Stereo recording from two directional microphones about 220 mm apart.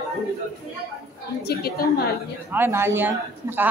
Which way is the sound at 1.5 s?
45° left (ahead or behind).